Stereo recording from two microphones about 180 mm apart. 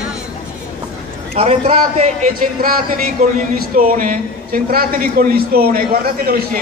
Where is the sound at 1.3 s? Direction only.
35° right (ahead or behind).